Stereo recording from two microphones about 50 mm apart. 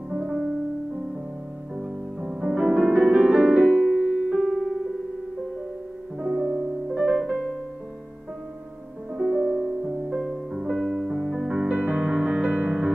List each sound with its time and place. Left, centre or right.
0.1 s music: centre
1.8 s music: centre
6.1 s music: centre
9.1 s music: centre
11.6 s music: right